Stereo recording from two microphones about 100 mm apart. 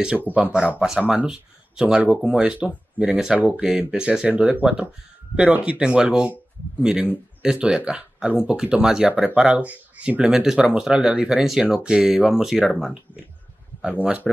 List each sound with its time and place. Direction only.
0.3 s speech: 10° right (ahead or behind)
13.9 s speech: 15° right (ahead or behind)